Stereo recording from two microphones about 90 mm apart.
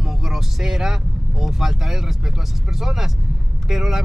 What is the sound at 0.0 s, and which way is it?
Speech, 5° right (ahead or behind).